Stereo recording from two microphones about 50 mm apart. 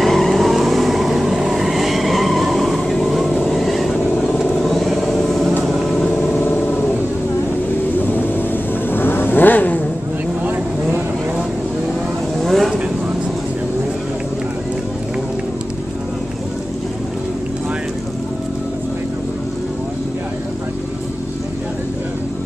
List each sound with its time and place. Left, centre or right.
0.0 s vehicle: centre
6.4 s a sound: left
8.0 s vehicle: left
12.4 s vehicle: centre